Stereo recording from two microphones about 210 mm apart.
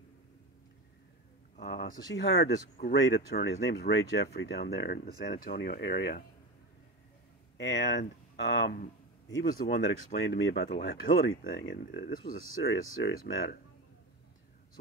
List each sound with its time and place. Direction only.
1.6 s speech: 45° left (ahead or behind)
2.9 s speech: 60° left (ahead or behind); by 5.8 s 40° left (ahead or behind)
5.8 s speech: 50° left (ahead or behind)
7.5 s speech: 55° left (ahead or behind)
9.4 s speech: 45° left (ahead or behind); by 11.7 s 60° left (ahead or behind)
11.7 s speech: 40° left (ahead or behind)